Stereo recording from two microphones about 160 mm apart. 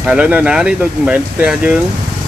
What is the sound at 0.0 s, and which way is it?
Speech, 5° right (ahead or behind).